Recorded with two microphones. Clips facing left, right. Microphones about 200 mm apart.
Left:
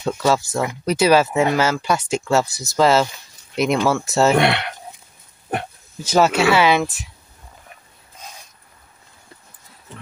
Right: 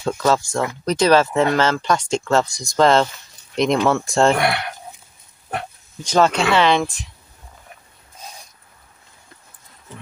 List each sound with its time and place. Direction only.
0.0 s speech: 10° left (ahead or behind)
6.0 s speech: 5° left (ahead or behind)